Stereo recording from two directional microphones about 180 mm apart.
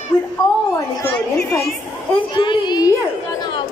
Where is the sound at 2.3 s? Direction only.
25° left (ahead or behind).